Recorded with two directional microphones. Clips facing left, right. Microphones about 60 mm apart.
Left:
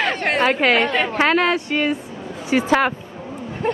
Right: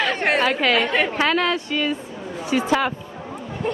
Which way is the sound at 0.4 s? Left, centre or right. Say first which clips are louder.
Left 6 dB; left.